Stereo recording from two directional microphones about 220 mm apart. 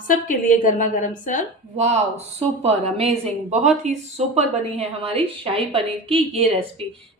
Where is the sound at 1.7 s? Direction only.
30° right (ahead or behind).